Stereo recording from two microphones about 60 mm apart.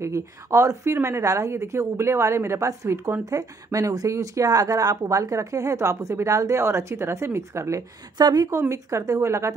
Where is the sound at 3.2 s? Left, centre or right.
Right.